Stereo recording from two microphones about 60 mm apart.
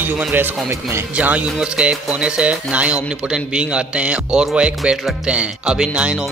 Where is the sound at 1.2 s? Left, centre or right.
Right.